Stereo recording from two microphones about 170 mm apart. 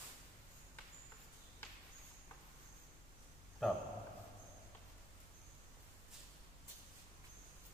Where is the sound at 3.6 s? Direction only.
Centre (ahead or behind).